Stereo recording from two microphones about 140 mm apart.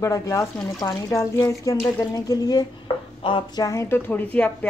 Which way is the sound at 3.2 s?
40° left (ahead or behind).